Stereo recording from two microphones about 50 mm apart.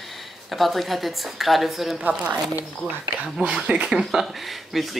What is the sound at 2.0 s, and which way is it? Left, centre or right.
Speech, right.